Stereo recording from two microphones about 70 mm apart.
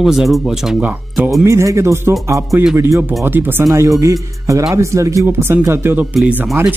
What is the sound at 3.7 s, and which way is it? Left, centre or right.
Speech, right.